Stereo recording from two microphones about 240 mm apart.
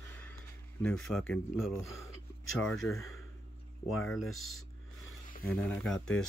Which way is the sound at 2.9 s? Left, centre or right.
Left.